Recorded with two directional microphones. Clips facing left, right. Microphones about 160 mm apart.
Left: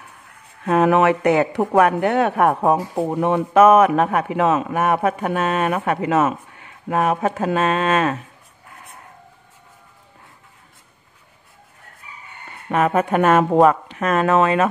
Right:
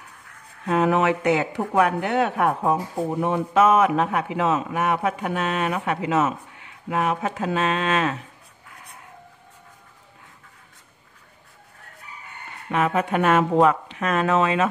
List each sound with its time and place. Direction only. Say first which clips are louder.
0.7 s speech: left 4 dB; 60° left (ahead or behind)
12.7 s speech: left 4 dB; 45° left (ahead or behind)